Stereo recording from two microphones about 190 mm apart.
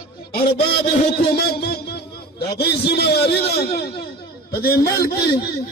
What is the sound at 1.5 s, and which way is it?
Speech, 55° left (ahead or behind).